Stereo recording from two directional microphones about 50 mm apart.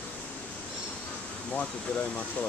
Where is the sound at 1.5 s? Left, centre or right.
Left.